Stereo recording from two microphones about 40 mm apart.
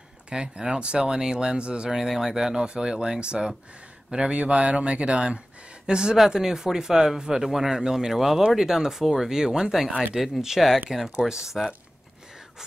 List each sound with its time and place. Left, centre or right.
0.3 s speech: right
1.9 s speech: centre